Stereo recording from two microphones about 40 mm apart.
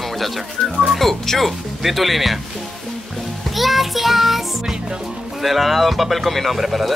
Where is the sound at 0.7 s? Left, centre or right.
Centre.